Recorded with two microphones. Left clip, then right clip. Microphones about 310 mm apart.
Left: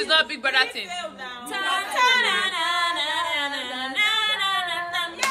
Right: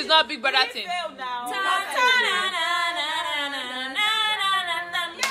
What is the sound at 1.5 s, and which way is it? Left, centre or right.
A capella, centre.